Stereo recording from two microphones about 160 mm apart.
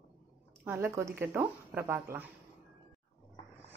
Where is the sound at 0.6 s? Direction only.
15° right (ahead or behind).